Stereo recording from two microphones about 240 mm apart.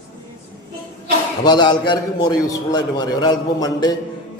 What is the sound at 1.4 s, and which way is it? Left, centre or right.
A man's voice, centre.